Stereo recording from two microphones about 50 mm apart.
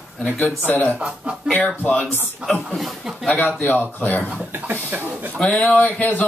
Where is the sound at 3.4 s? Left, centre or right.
Left.